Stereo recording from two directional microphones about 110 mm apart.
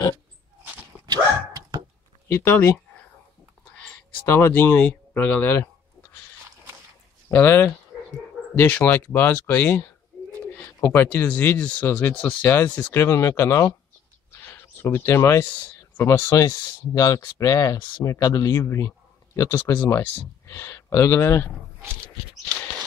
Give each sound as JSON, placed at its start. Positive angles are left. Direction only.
{"t": 1.0, "sound": "dog", "side_deg": -35}
{"t": 2.2, "sound": "speech", "side_deg": 20}
{"t": 4.3, "sound": "speech", "side_deg": 20}
{"t": 7.2, "sound": "speech", "side_deg": 20}